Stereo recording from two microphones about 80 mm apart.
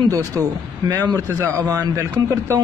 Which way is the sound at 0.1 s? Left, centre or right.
Right.